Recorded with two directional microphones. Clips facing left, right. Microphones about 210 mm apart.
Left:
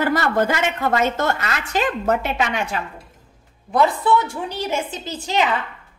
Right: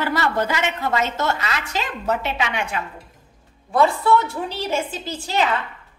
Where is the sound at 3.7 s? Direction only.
15° left (ahead or behind).